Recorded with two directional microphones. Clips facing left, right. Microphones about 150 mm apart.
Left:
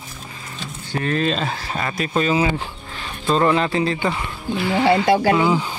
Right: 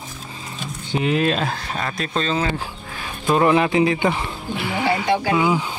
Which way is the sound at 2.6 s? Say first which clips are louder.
Even; 10° right (ahead or behind).